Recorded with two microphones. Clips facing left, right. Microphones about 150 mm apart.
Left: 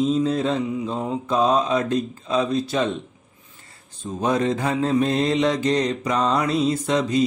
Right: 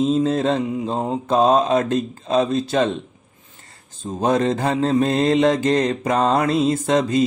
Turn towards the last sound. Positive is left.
turn(degrees=-45)  # may be behind; listen again after turning